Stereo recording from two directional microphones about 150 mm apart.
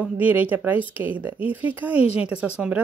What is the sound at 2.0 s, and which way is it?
Speech, 40° left (ahead or behind).